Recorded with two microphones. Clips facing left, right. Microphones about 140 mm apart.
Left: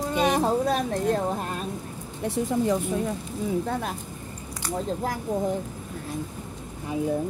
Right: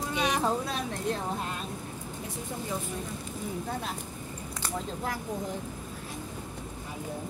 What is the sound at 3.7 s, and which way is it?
Speech, 55° left (ahead or behind).